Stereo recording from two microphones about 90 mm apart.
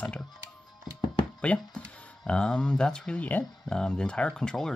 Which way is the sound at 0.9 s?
5° right (ahead or behind).